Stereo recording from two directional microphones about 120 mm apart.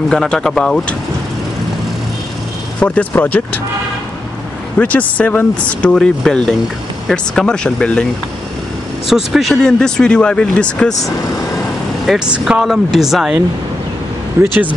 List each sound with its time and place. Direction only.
0.1 s speech: 5° left (ahead or behind)
2.8 s speech: 15° left (ahead or behind)
4.7 s speech: 10° left (ahead or behind)
9.0 s speech: centre (ahead or behind)
12.1 s speech: 5° right (ahead or behind)
14.4 s speech: 20° right (ahead or behind)